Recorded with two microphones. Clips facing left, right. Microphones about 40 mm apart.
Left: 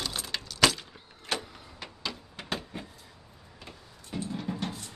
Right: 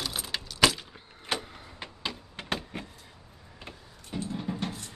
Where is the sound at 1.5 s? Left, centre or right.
Right.